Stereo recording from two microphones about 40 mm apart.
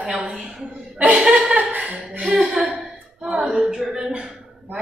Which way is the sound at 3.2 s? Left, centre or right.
Right.